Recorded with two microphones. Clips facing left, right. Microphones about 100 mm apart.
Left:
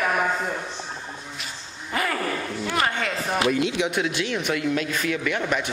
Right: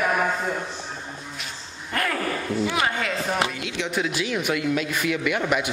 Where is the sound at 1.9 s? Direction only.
5° left (ahead or behind).